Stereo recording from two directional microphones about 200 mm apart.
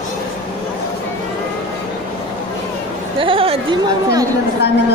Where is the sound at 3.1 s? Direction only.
25° right (ahead or behind).